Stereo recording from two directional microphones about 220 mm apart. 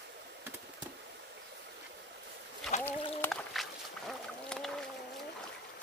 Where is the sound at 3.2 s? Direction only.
Centre (ahead or behind).